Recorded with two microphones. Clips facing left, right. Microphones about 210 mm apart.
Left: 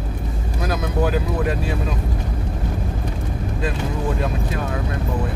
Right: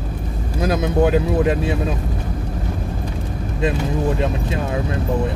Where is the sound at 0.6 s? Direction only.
25° right (ahead or behind).